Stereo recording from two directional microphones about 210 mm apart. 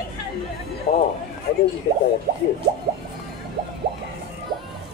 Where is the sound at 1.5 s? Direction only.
50° left (ahead or behind).